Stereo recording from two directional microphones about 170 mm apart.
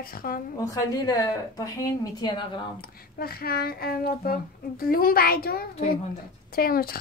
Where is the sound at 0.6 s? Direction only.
20° left (ahead or behind).